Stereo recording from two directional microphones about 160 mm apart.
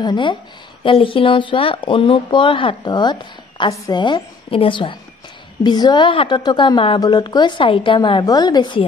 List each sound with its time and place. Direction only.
0.0 s a woman's voice: 30° left (ahead or behind)